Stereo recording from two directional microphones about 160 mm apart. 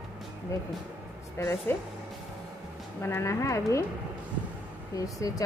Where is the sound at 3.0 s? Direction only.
15° left (ahead or behind).